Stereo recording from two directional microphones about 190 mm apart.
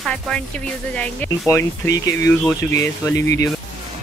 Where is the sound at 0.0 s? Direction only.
5° left (ahead or behind).